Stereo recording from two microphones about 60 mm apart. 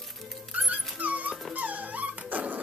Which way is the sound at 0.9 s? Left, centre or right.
Right.